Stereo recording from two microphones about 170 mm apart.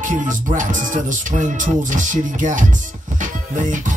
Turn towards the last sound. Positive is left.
turn(degrees=-50)  # may be behind; listen again after turning